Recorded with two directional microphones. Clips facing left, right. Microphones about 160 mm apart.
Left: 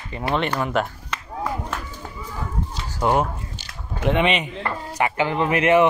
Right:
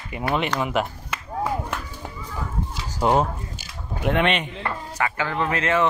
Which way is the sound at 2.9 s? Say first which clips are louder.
Even; 15° right (ahead or behind).